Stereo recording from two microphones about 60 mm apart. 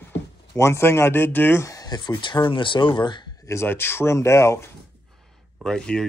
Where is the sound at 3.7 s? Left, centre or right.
Left.